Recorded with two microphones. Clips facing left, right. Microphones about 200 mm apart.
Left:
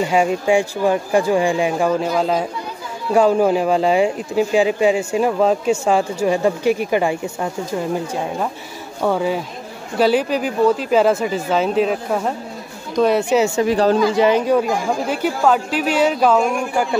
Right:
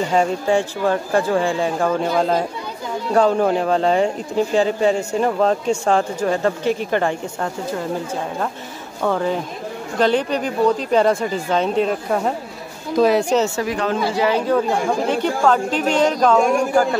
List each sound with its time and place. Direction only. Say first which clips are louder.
0.0 s speech: left 1 dB; 10° left (ahead or behind)
9.0 s speech: left 1 dB; 10° left (ahead or behind)
13.7 s speech: left 6 dB; 35° left (ahead or behind)
14.5 s speech: left 1 dB; 10° left (ahead or behind)